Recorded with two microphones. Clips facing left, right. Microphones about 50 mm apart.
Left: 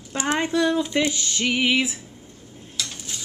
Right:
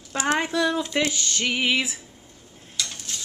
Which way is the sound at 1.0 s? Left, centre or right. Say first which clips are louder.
Left 1 dB; centre.